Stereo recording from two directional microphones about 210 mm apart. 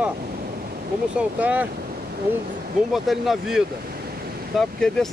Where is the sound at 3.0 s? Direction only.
Centre (ahead or behind).